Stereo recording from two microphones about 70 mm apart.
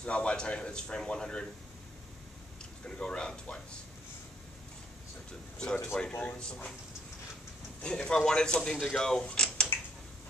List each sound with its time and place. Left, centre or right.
0.0 s creak: centre
2.6 s speech: centre
5.6 s creak: centre
6.1 s speech: centre
7.8 s creak: centre